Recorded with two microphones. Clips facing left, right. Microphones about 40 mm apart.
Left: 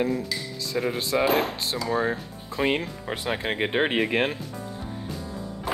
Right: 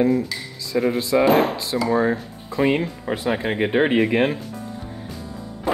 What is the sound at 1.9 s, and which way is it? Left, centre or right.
Speech, right.